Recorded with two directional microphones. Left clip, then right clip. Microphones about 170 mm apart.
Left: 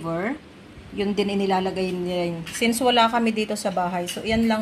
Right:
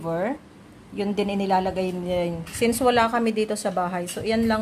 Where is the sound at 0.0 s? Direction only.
10° right (ahead or behind).